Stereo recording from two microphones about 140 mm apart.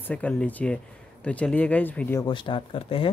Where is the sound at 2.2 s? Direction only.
35° left (ahead or behind).